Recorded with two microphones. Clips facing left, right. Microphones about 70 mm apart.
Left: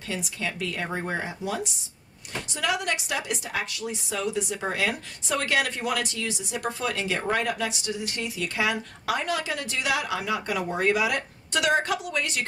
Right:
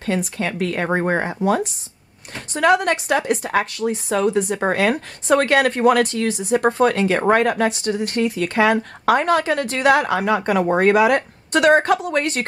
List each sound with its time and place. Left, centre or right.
0.0 s speech: right